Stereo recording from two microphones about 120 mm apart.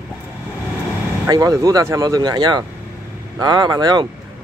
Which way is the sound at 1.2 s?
30° right (ahead or behind).